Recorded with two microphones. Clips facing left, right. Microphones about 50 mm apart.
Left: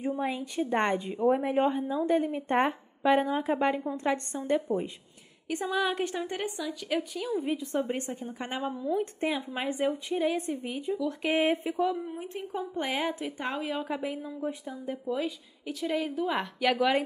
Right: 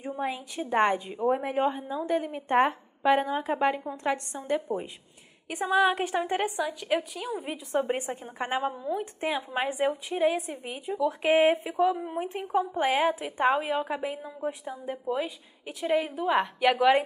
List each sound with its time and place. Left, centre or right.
0.2 s a woman's voice: centre
7.8 s speech: right
8.4 s speech: centre
9.5 s speech: centre
9.8 s a woman's voice: centre
13.4 s speech: right
13.8 s speech: centre